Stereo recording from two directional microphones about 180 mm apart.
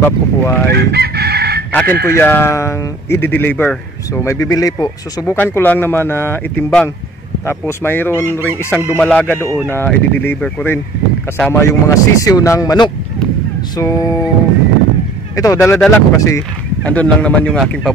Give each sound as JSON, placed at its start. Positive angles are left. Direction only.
{"t": 0.0, "sound": "speech", "side_deg": 10}
{"t": 0.7, "sound": "chicken", "side_deg": -60}
{"t": 1.7, "sound": "speech", "side_deg": 10}
{"t": 13.7, "sound": "music", "side_deg": 20}
{"t": 15.3, "sound": "speech", "side_deg": 15}